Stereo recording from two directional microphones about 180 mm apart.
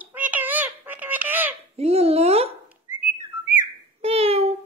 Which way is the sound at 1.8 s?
35° right (ahead or behind).